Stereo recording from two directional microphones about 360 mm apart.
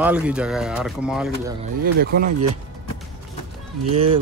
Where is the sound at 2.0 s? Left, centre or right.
Right.